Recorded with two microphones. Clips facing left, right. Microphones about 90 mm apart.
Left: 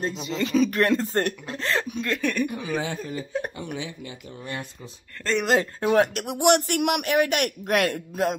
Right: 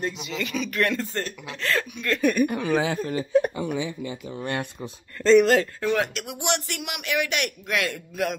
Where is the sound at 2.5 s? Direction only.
60° right (ahead or behind).